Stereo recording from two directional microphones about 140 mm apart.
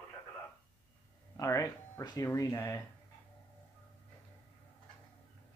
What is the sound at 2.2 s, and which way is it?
Speech, 15° left (ahead or behind).